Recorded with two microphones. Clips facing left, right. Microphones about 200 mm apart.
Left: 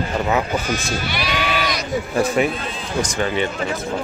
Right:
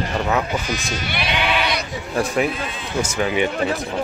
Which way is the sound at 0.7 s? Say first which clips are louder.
Left 3 dB; 45° left (ahead or behind).